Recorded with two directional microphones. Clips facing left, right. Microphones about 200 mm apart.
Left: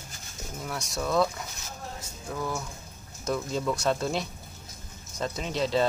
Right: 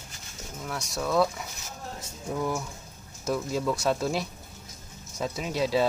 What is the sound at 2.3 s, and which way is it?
Speech, 15° right (ahead or behind).